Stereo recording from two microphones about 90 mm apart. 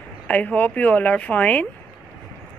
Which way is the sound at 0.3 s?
15° left (ahead or behind).